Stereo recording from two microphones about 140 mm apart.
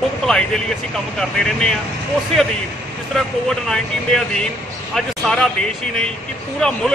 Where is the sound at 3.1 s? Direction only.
Centre (ahead or behind).